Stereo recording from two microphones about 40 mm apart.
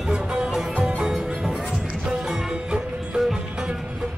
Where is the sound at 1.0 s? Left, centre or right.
Centre.